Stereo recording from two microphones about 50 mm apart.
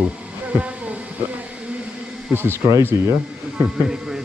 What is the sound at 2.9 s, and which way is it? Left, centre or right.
Speech, right.